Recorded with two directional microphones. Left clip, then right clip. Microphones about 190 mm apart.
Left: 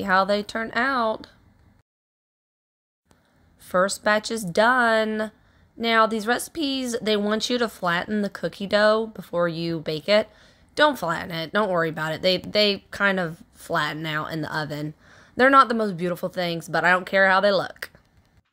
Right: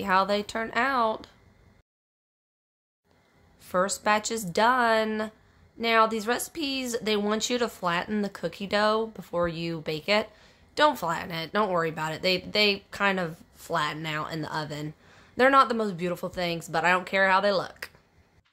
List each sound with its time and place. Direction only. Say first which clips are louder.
0.0 s a woman's voice: left 3 dB; 15° left (ahead or behind)
3.5 s speech: left 5 dB; 20° left (ahead or behind)